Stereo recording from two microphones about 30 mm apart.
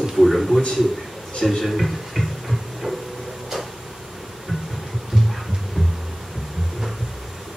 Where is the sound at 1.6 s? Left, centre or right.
Centre.